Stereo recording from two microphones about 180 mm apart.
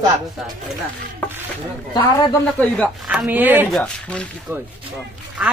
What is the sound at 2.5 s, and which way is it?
Speech, 5° left (ahead or behind).